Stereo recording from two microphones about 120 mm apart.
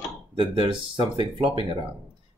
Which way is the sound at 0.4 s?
45° right (ahead or behind).